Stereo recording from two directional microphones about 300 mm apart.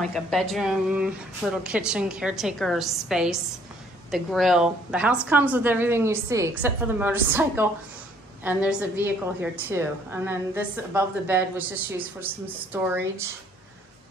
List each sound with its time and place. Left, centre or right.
0.0 s a woman's voice: centre